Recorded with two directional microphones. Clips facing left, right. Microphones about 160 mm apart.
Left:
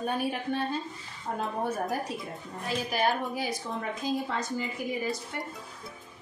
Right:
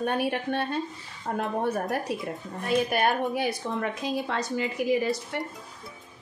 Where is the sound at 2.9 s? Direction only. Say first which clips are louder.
Right 3 dB; 60° right (ahead or behind); by 5.1 s 80° right.